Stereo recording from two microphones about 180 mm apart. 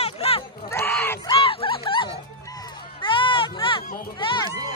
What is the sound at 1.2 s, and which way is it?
Music, 30° left (ahead or behind).